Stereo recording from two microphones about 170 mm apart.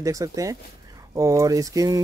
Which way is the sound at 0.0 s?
20° right (ahead or behind).